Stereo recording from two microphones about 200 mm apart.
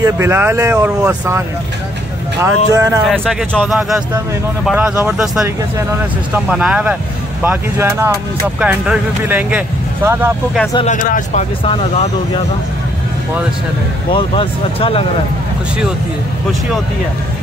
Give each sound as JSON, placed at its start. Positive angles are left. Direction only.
{"t": 0.0, "sound": "speech", "side_deg": -10}
{"t": 2.4, "sound": "speech", "side_deg": -15}
{"t": 3.1, "sound": "speech", "side_deg": 0}
{"t": 11.1, "sound": "speech", "side_deg": 40}
{"t": 11.6, "sound": "speech", "side_deg": 30}
{"t": 14.1, "sound": "speech", "side_deg": 25}